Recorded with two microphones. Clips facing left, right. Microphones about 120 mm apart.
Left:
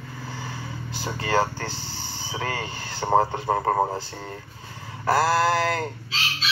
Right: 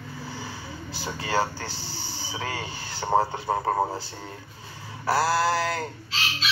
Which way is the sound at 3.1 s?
20° left (ahead or behind).